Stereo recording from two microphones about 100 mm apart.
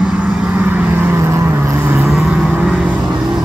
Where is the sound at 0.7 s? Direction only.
20° right (ahead or behind).